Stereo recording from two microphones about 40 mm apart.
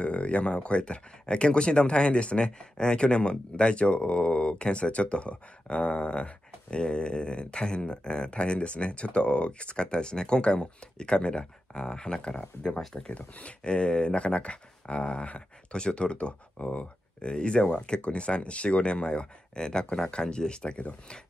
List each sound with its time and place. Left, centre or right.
0.0 s speech: left; by 13.1 s centre
13.1 s speech: left
17.3 s speech: left